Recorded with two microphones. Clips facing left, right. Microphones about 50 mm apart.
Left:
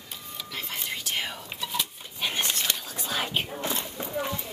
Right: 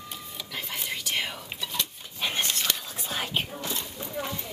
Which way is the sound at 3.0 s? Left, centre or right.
Left.